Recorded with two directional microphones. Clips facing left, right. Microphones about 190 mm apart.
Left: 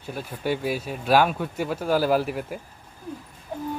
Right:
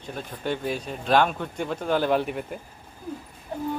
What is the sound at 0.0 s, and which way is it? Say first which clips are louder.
Speech: left 2 dB; 5° left (ahead or behind).